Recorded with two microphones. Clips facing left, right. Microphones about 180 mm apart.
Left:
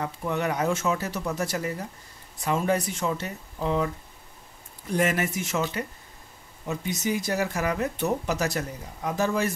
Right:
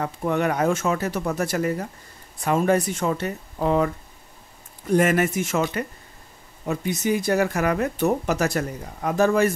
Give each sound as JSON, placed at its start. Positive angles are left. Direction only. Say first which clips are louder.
{"t": 0.0, "sound": "speech", "louder": "right 5 dB", "side_deg": -55}
{"t": 4.9, "sound": "speech", "louder": "right 6 dB", "side_deg": -50}
{"t": 6.6, "sound": "speech", "louder": "right 4 dB", "side_deg": -55}